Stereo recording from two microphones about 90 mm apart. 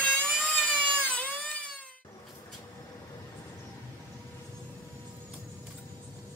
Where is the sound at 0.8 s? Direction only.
15° left (ahead or behind).